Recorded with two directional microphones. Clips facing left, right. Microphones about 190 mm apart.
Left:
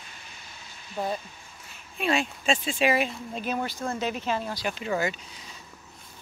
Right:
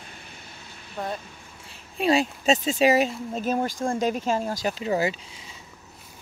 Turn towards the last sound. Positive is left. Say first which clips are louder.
# right 3 dB
turn(degrees=-35)  # may be behind; listen again after turning